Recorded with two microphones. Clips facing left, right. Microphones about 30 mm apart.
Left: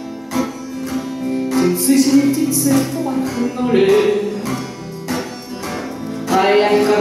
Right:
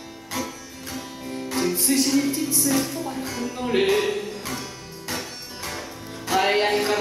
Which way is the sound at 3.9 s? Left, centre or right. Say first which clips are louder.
Left 9 dB; left.